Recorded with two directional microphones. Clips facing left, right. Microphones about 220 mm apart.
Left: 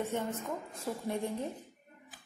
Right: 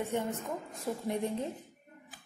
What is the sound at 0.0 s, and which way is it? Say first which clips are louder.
A woman's voice: right 1 dB; 15° right (ahead or behind).